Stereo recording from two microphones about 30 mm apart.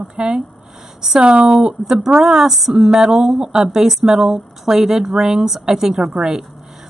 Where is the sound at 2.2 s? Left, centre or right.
Centre.